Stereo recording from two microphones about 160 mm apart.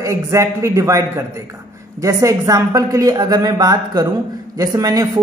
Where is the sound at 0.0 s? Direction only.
20° right (ahead or behind).